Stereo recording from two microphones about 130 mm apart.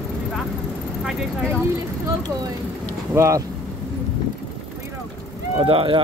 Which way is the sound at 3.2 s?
25° right (ahead or behind).